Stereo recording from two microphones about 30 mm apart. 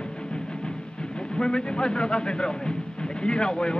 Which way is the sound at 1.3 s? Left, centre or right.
Left.